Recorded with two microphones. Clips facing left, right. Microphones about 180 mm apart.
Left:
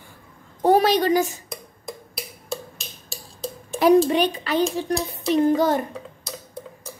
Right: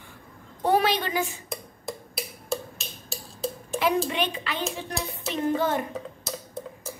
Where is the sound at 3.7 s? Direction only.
35° left (ahead or behind).